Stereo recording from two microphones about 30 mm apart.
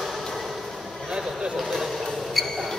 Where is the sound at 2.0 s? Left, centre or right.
Centre.